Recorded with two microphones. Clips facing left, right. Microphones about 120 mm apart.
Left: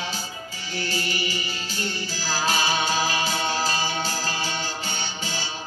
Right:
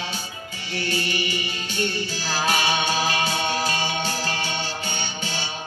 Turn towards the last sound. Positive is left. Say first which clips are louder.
# right 1 dB
turn(degrees=35)  # may be behind; listen again after turning